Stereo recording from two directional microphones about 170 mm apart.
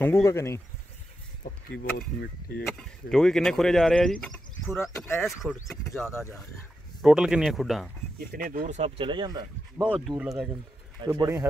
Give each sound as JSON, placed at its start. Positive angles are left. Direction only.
{"t": 0.0, "sound": "speech", "side_deg": 15}
{"t": 1.8, "sound": "speech", "side_deg": 65}
{"t": 2.8, "sound": "speech", "side_deg": 5}
{"t": 5.2, "sound": "speech", "side_deg": 0}
{"t": 7.0, "sound": "speech", "side_deg": -5}
{"t": 8.2, "sound": "speech", "side_deg": -55}
{"t": 9.8, "sound": "speech", "side_deg": -5}
{"t": 11.0, "sound": "speech", "side_deg": -25}